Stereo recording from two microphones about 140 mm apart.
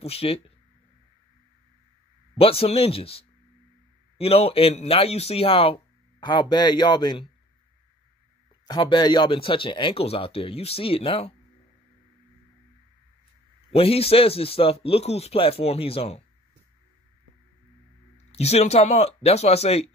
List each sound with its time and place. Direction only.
0.0 s speech: 45° left (ahead or behind)
2.3 s speech: 45° left (ahead or behind)
8.6 s speech: 30° left (ahead or behind)
13.7 s speech: 45° left (ahead or behind)
18.1 s speech: 50° left (ahead or behind)